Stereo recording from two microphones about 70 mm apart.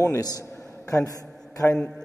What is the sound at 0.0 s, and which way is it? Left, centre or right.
A man's voice, left.